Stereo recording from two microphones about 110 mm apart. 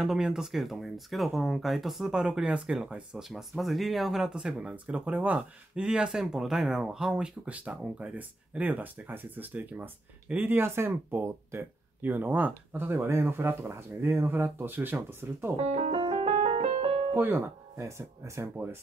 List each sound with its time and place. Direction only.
0.0 s speech: 5° right (ahead or behind); by 15.5 s 20° right (ahead or behind)
15.6 s speech: 80° right
16.0 s music: 55° right (ahead or behind)
17.1 s speech: 20° right (ahead or behind)